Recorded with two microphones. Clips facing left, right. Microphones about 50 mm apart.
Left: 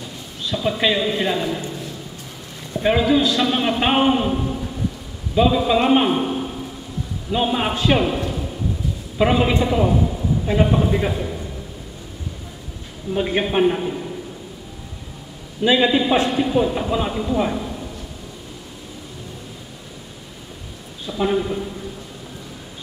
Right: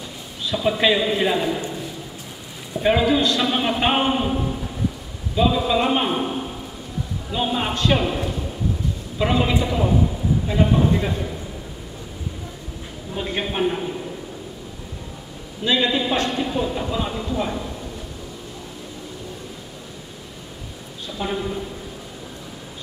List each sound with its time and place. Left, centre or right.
0.5 s a man's voice: centre
5.3 s a man's voice: centre
7.2 s a man's voice: centre
9.2 s a man's voice: centre
10.4 s a man's voice: centre
13.1 s a man's voice: centre
15.6 s a man's voice: centre
21.1 s a man's voice: centre